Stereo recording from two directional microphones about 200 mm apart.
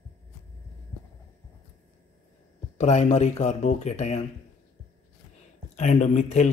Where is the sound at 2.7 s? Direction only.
35° left (ahead or behind).